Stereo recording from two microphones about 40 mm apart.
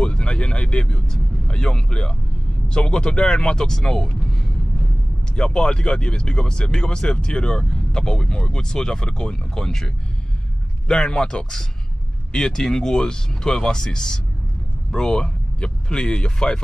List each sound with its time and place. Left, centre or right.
0.0 s speech: left
10.9 s speech: centre